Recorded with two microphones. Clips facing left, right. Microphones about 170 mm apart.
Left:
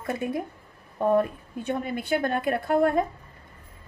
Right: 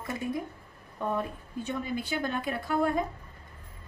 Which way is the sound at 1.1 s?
55° left (ahead or behind).